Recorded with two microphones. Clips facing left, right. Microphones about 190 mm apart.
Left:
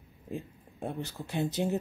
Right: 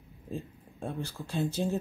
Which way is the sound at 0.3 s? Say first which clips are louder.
Even; 20° left (ahead or behind).